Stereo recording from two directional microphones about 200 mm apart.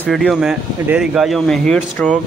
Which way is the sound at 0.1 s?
Centre (ahead or behind).